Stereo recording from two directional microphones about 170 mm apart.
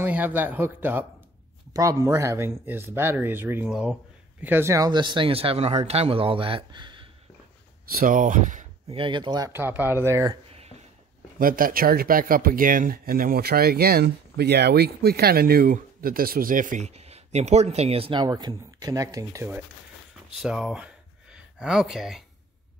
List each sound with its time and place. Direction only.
0.0 s speech: 10° right (ahead or behind); by 7.1 s 25° right (ahead or behind)
8.0 s speech: 50° right (ahead or behind)
8.9 s speech: 30° right (ahead or behind)
11.3 s speech: 55° right (ahead or behind); by 19.6 s 15° right (ahead or behind)
20.4 s speech: 5° right (ahead or behind)